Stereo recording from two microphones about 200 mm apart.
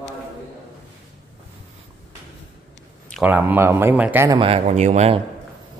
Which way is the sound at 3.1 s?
10° right (ahead or behind).